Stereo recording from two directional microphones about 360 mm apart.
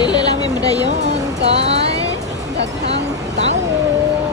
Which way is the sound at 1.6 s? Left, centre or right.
Centre.